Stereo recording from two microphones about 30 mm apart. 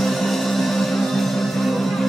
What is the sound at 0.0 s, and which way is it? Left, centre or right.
Music, centre.